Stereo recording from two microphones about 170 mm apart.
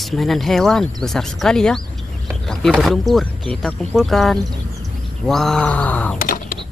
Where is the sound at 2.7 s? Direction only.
Centre (ahead or behind).